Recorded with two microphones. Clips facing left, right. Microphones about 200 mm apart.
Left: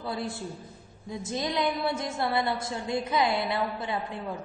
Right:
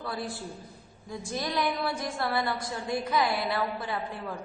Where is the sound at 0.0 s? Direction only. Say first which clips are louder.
Left 2 dB; 25° left (ahead or behind).